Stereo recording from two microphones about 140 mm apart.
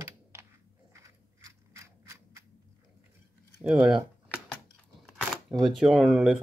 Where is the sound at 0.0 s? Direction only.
20° right (ahead or behind).